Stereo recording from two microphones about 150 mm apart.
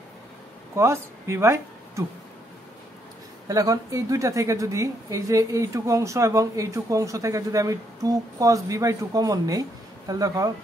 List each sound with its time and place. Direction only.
0.7 s a woman's voice: 20° right (ahead or behind)
3.4 s a woman's voice: 25° right (ahead or behind)